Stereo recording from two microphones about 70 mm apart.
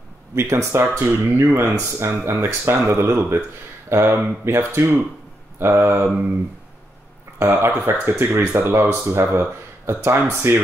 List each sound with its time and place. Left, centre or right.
0.3 s speech: right
7.4 s speech: right
8.3 s speech: right